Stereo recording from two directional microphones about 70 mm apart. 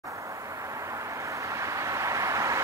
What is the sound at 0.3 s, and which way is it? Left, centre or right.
Vehicle, right.